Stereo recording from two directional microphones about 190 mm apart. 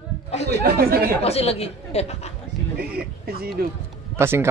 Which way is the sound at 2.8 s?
55° right (ahead or behind).